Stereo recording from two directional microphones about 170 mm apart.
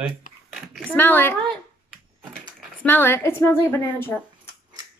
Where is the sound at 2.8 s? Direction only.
10° left (ahead or behind).